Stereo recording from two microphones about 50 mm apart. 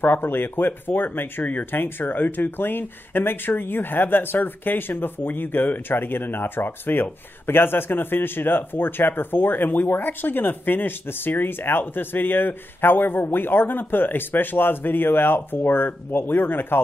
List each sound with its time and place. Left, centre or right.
0.0 s speech: left
1.7 s speech: left